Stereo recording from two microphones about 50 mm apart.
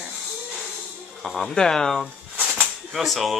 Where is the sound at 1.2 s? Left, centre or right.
Centre.